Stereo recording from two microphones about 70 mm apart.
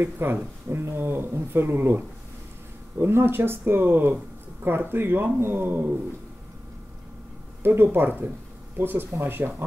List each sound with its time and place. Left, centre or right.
0.0 s speech: right
7.6 s speech: right